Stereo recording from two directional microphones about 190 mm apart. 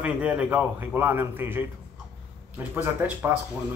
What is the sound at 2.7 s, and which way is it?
Speech, 10° right (ahead or behind).